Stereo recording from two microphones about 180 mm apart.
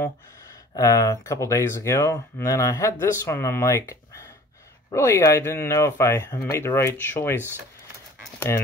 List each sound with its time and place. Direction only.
0.7 s speech: 20° left (ahead or behind)